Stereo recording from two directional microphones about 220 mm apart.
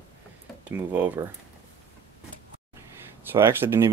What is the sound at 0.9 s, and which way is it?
Speech, 10° right (ahead or behind).